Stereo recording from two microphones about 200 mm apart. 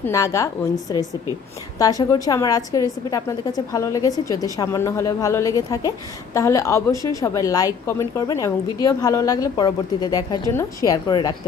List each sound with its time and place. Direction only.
0.0 s a woman's voice: 15° left (ahead or behind)
1.8 s a woman's voice: 15° left (ahead or behind)